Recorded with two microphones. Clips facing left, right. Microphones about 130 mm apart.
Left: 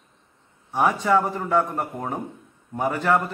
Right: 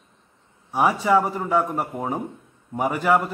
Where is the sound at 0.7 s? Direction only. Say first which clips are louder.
Right 1 dB; 10° right (ahead or behind).